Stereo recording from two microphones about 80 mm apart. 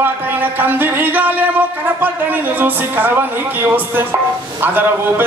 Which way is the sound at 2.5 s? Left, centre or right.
Right.